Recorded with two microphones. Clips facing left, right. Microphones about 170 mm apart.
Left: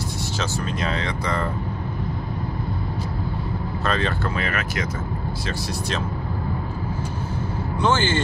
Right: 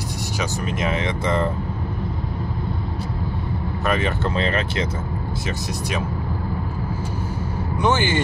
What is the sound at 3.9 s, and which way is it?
Speech, 20° right (ahead or behind).